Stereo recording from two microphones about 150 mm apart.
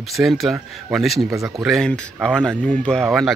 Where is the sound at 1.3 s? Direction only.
20° right (ahead or behind).